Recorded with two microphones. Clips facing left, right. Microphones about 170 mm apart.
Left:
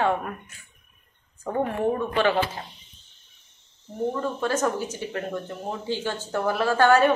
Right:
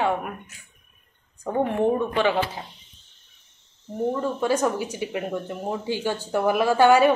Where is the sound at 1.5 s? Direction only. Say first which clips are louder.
Right 3 dB; 20° right (ahead or behind).